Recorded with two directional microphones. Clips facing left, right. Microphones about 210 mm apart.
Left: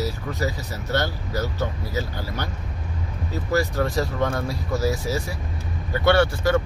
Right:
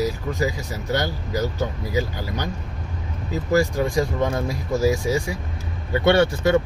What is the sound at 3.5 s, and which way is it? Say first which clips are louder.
Speech: right 3 dB; 15° right (ahead or behind).